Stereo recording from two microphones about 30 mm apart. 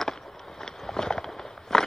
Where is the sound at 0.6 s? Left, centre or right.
Centre.